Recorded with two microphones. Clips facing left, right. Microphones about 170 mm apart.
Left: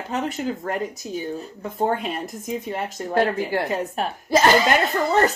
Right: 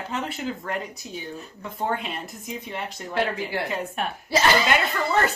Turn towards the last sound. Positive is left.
turn(degrees=40)  # may be behind; listen again after turning